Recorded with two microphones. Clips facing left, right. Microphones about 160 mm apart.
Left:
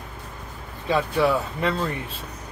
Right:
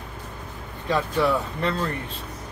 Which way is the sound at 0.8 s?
5° left (ahead or behind).